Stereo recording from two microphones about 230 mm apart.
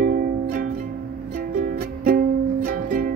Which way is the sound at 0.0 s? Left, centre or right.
Right.